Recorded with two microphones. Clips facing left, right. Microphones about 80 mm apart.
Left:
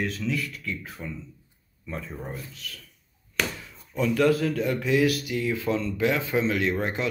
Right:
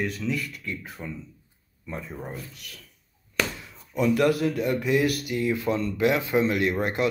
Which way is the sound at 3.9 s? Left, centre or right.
Centre.